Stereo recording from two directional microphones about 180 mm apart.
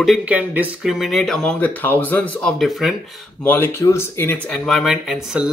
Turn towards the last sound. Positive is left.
turn(degrees=-5)  # may be behind; listen again after turning